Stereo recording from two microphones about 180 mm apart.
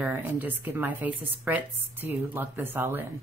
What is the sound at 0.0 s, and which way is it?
Speech, 15° right (ahead or behind).